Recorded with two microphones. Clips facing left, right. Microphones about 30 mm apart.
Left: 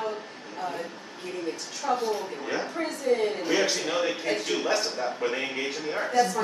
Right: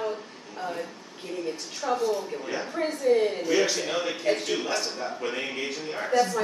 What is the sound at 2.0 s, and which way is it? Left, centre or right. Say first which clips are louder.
Speech: right 2 dB; left.